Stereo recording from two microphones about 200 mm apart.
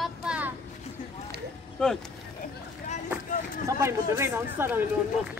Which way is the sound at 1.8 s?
5° left (ahead or behind).